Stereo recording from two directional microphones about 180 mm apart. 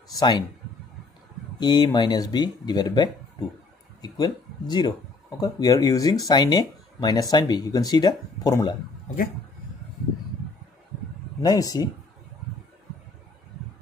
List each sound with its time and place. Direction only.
0.1 s speech: 20° left (ahead or behind)
1.6 s speech: 25° left (ahead or behind)
11.4 s speech: 20° left (ahead or behind)